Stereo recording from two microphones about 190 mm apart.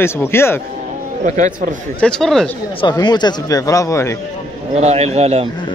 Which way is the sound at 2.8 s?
20° left (ahead or behind).